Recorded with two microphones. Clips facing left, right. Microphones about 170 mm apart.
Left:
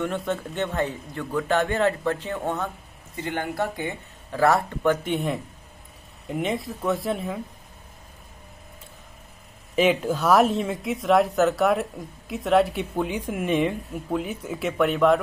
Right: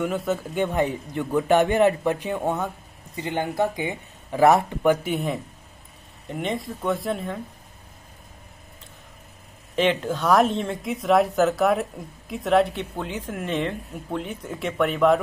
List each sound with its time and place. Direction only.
0.0 s a man's voice: 5° right (ahead or behind)
5.0 s speech: centre (ahead or behind)
9.8 s speech: 10° left (ahead or behind)
12.7 s speech: 15° left (ahead or behind)